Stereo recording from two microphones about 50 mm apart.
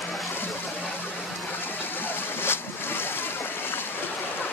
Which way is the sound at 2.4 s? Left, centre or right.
Left.